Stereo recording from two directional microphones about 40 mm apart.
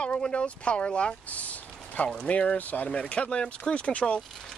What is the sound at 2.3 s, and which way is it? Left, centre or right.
Speech, left.